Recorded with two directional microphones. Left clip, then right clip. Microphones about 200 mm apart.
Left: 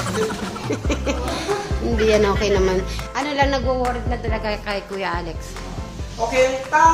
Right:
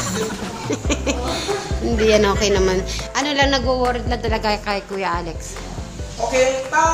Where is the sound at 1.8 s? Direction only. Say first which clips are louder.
Right 2 dB; 5° right (ahead or behind).